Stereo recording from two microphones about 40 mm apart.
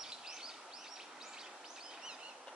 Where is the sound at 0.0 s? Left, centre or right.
Centre.